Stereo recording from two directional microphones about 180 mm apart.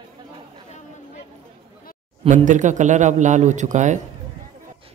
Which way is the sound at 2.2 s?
45° right (ahead or behind).